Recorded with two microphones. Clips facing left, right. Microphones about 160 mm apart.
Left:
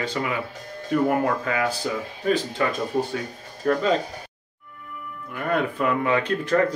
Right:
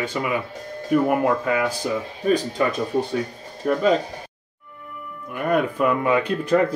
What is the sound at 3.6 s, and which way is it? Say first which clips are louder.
Speech: even; 10° right (ahead or behind).